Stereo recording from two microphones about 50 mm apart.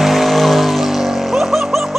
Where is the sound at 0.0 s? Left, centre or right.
Centre.